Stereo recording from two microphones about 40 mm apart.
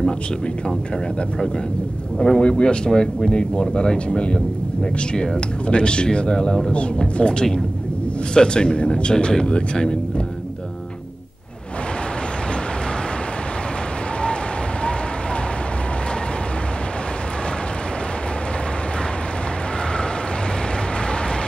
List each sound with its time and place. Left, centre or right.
2.1 s speech: centre